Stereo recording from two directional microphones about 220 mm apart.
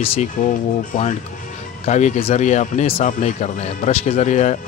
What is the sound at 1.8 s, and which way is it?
Speech, 30° left (ahead or behind).